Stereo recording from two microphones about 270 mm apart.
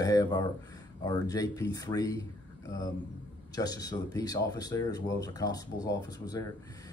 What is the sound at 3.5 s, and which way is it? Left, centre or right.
Speech, centre.